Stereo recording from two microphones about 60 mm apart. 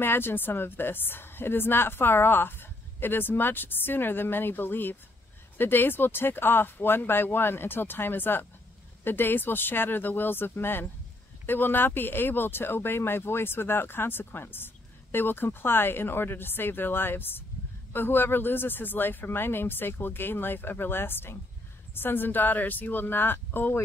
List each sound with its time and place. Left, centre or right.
0.0 s speech: left